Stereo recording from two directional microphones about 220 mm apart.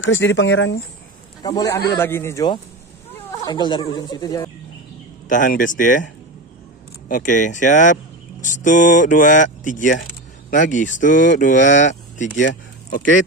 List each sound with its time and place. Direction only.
0.0 s speech: 55° left (ahead or behind)
1.4 s speech: 15° left (ahead or behind)
5.3 s speech: 35° left (ahead or behind)
7.1 s speech: 35° left (ahead or behind)